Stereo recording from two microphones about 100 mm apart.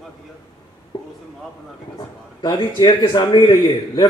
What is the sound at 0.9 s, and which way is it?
A man's voice, 50° left (ahead or behind).